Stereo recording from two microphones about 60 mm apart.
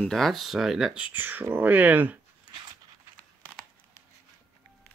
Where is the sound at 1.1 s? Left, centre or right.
Right.